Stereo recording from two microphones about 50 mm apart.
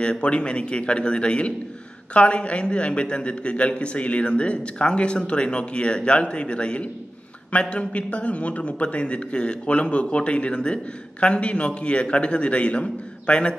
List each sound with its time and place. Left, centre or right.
0.0 s a man's voice: left